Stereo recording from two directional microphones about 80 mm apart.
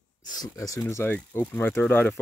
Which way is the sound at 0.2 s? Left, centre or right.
Left.